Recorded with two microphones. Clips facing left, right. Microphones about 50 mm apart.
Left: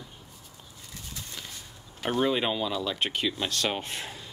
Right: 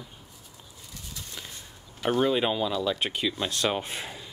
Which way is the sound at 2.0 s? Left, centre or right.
Centre.